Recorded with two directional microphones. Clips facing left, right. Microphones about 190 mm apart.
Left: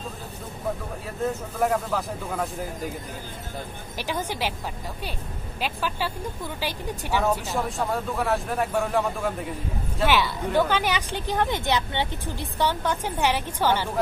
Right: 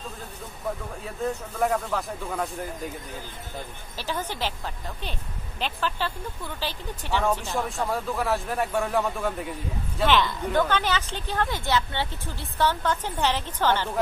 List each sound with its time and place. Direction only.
1.2 s speech: centre (ahead or behind)
4.0 s a woman's voice: 15° left (ahead or behind)
5.6 s a woman's voice: 10° left (ahead or behind)
7.4 s a woman's voice: centre (ahead or behind)